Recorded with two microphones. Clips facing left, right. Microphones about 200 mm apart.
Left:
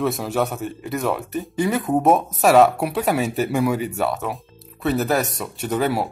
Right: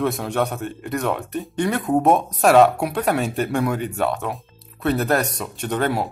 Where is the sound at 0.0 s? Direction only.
Centre (ahead or behind).